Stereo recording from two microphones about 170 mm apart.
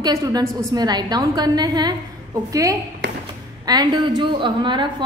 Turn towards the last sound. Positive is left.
turn(degrees=-30)  # may be behind; listen again after turning